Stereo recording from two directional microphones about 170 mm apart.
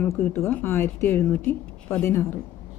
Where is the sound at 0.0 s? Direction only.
10° left (ahead or behind).